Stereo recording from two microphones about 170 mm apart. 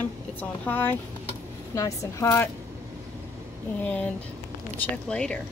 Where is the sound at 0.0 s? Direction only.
10° left (ahead or behind).